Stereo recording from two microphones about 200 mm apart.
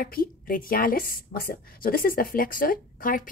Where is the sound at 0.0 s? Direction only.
45° left (ahead or behind).